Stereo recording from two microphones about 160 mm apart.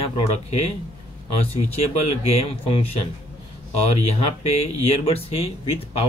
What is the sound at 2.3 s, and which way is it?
Speech, 40° left (ahead or behind).